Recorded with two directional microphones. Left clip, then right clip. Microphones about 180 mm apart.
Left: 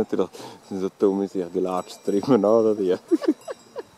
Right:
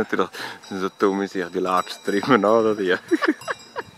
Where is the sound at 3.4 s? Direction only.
30° right (ahead or behind).